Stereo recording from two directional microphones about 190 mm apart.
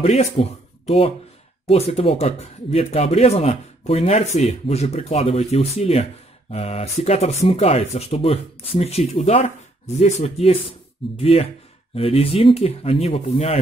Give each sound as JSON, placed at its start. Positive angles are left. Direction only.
{"t": 0.0, "sound": "speech", "side_deg": 35}